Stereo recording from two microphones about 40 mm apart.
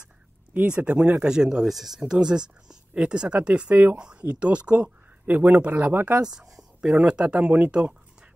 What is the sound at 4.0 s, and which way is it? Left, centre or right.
Speech, right.